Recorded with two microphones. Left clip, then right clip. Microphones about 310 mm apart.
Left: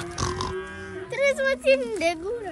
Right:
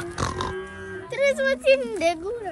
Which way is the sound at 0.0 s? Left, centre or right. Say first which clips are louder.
Right 1 dB; centre.